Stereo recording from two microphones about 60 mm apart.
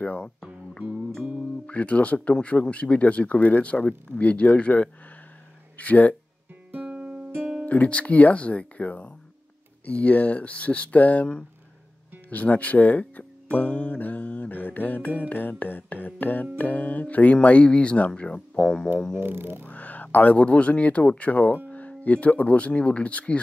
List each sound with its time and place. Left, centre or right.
0.0 s speech: left
1.7 s speech: left
6.7 s music: right
7.6 s speech: left
19.1 s a sound: right
19.6 s speech: left